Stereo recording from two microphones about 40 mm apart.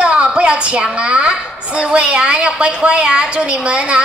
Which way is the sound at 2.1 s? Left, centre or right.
Right.